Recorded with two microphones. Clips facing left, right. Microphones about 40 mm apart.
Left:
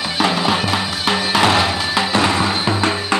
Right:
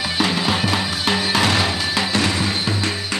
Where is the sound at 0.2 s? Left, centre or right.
Centre.